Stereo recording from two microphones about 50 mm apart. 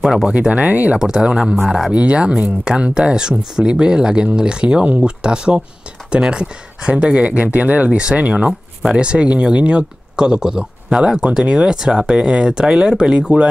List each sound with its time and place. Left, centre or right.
0.0 s speech: centre
0.3 s speech: right
0.9 s speech: centre